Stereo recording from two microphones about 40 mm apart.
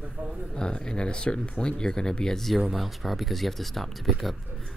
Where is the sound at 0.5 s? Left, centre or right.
Centre.